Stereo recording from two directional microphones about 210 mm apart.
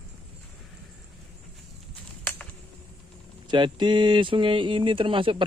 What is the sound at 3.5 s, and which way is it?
Speech, 20° right (ahead or behind).